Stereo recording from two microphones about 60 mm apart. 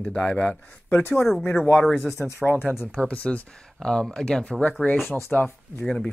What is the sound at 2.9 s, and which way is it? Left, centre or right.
Speech, left.